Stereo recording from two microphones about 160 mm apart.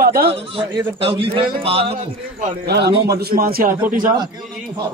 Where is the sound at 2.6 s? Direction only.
90° right.